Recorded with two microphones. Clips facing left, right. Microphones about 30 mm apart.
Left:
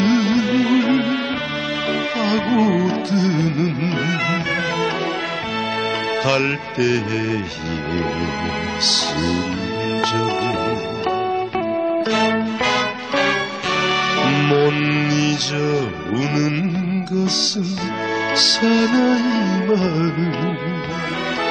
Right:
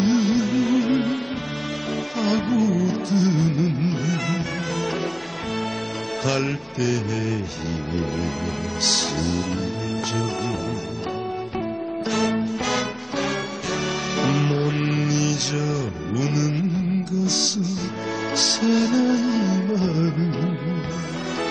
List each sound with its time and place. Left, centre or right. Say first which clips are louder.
0.0 s music: left 3 dB; left
2.5 s music: left 4 dB; left
6.2 s music: left 3 dB; left
12.1 s music: left 5 dB; left
13.1 s music: left 8 dB; left